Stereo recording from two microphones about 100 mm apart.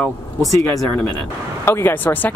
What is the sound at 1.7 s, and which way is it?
Speech, 20° left (ahead or behind).